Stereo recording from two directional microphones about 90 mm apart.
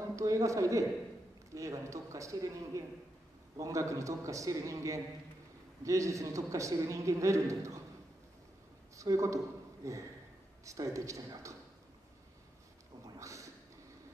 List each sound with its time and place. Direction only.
0.1 s a man's voice: 35° right (ahead or behind)
8.9 s a man's voice: 35° right (ahead or behind)
13.2 s a sound: 35° right (ahead or behind)